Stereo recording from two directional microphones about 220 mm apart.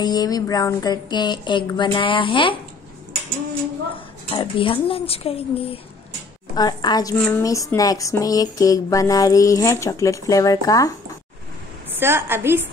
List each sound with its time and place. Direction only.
0.0 s a woman's voice: 20° left (ahead or behind)
4.3 s a woman's voice: 25° left (ahead or behind)
6.5 s a sound: 20° left (ahead or behind)
12.0 s a woman's voice: 10° right (ahead or behind)